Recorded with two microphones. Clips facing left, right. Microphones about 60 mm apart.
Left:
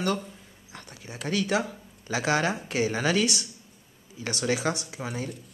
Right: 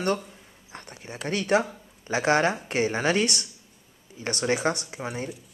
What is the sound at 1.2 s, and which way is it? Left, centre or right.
Speech, right.